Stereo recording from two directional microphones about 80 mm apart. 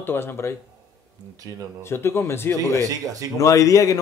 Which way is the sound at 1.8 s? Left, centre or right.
Left.